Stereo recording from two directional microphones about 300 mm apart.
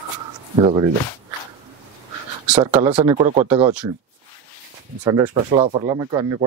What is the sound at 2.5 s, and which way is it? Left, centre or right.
Speech, centre.